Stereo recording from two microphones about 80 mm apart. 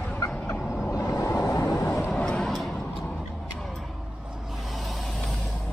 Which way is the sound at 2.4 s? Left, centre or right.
Centre.